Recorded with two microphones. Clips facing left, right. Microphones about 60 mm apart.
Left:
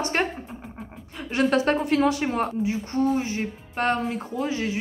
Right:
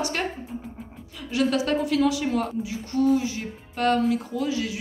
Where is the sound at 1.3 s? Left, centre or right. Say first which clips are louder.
Left 2 dB; left.